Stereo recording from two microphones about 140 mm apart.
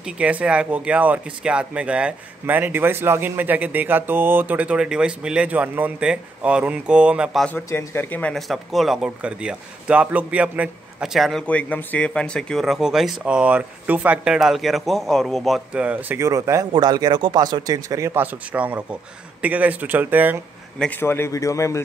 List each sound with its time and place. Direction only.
0.0 s speech: 10° right (ahead or behind)
7.4 s speech: 15° left (ahead or behind); by 20.3 s 15° right (ahead or behind)
20.8 s a man's voice: 15° left (ahead or behind)